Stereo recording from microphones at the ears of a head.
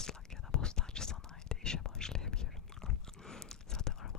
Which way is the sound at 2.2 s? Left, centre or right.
Left.